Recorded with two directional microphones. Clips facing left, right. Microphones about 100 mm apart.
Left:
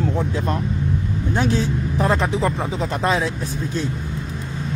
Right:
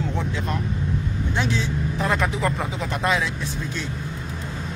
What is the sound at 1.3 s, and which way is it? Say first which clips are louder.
Speech: left 5 dB; 45° left (ahead or behind).